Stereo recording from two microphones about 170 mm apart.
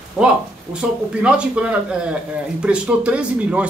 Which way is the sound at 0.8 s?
10° right (ahead or behind).